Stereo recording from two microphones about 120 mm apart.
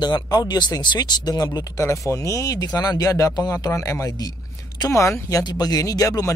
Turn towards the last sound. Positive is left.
turn(degrees=30)  # may be behind; listen again after turning